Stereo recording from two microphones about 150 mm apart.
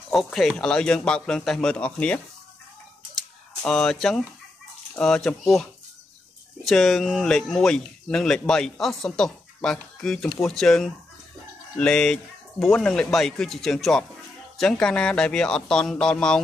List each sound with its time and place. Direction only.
0.1 s speech: centre (ahead or behind)
3.6 s speech: 5° left (ahead or behind)
6.6 s speech: centre (ahead or behind)